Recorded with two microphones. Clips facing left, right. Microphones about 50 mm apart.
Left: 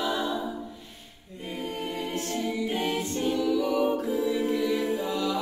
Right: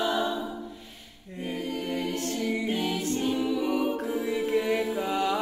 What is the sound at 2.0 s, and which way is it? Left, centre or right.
A capella, left.